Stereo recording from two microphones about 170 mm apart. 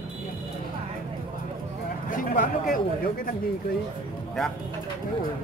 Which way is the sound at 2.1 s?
50° left (ahead or behind).